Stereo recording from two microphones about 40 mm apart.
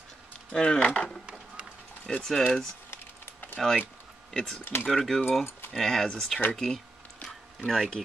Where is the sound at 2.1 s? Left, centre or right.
Centre.